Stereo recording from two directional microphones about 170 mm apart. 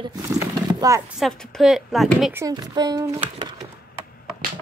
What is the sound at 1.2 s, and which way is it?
A woman's voice, 5° left (ahead or behind).